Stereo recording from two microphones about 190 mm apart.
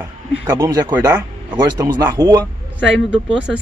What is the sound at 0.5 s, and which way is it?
Speech, 15° right (ahead or behind).